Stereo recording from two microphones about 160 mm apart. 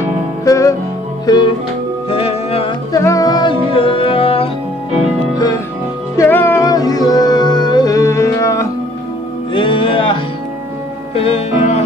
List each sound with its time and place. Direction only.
0.5 s music: 20° left (ahead or behind)
2.0 s music: 35° left (ahead or behind)
2.9 s music: 20° left (ahead or behind); by 4.5 s 35° left (ahead or behind)
6.1 s music: 15° left (ahead or behind)
9.5 s music: 30° left (ahead or behind)